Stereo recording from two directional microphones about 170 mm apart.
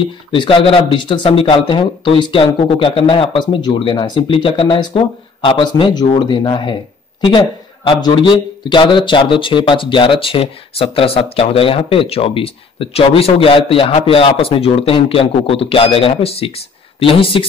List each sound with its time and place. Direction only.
0.3 s a man's voice: 30° left (ahead or behind)